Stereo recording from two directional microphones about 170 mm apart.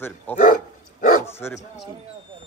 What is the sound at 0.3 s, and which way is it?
Speech, 10° left (ahead or behind).